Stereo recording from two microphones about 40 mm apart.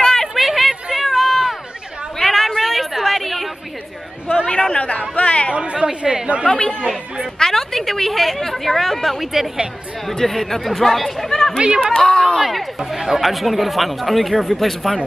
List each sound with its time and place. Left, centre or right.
0.3 s chatter: centre
1.0 s run: centre
2.1 s a sound: centre
4.5 s a sound: left
5.1 s chatter: left
5.5 s chatter: right
6.5 s speech: left
7.3 s a woman's voice: centre
10.0 s speech: centre
11.2 s chatter: centre
11.6 s speech: right
11.9 s speech: left
12.4 s speech: centre